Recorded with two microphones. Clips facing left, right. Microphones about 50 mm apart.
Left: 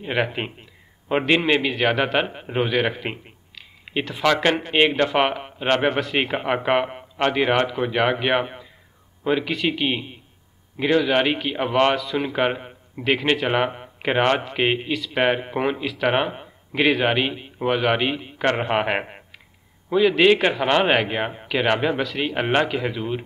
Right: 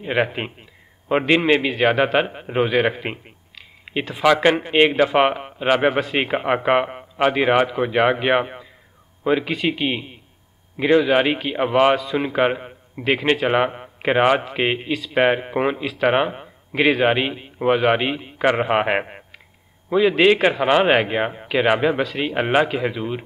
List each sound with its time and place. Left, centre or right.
0.0 s a man's voice: centre
10.9 s a man's voice: centre
11.1 s a man's voice: centre